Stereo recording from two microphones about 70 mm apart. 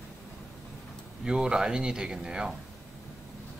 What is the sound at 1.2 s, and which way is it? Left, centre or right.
Speech, centre.